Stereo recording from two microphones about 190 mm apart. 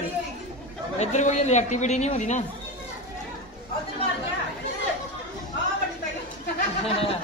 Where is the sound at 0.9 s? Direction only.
35° left (ahead or behind).